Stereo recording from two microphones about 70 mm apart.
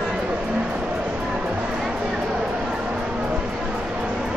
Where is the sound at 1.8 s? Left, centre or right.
Centre.